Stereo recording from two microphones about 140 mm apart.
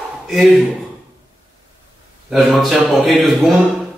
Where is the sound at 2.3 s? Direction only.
Centre (ahead or behind).